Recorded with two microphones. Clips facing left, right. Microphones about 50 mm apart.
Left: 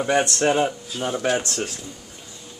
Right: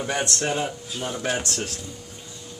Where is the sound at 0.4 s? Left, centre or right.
Left.